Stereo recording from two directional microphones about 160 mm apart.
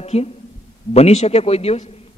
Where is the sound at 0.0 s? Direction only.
40° left (ahead or behind).